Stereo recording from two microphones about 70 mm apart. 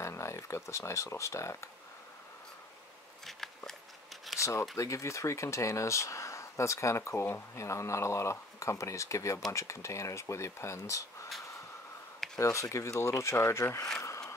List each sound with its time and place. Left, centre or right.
0.0 s speech: left
3.3 s a sound: centre
4.4 s speech: left
12.4 s speech: left